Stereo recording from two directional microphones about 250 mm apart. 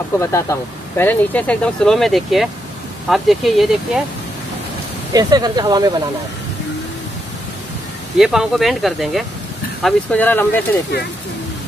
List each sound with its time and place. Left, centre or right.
0.2 s speech: centre
5.1 s speech: centre
8.2 s speech: centre